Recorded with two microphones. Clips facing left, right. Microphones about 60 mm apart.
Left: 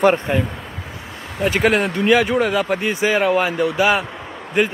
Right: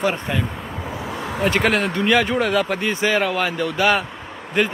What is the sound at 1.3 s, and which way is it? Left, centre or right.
Speech, centre.